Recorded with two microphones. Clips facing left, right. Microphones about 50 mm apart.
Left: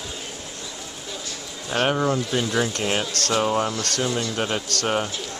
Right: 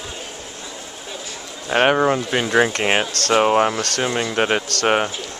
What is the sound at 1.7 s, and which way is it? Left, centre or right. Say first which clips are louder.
Speech: right 6 dB; right.